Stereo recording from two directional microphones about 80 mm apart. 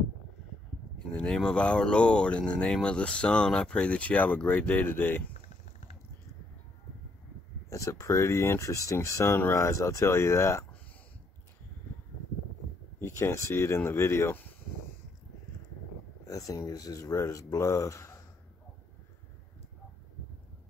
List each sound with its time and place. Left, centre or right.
1.1 s speech: centre; by 5.3 s left
7.7 s speech: left
13.0 s speech: left
16.3 s speech: left